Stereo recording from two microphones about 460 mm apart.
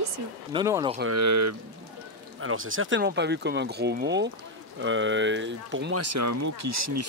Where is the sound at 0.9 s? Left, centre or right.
Right.